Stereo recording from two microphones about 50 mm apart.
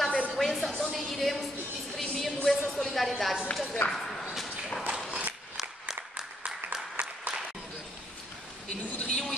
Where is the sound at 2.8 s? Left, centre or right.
Centre.